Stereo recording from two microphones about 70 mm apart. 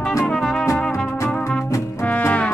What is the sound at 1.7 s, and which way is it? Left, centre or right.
Music, left.